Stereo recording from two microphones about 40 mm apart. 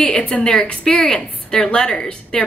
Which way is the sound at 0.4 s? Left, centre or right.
Centre.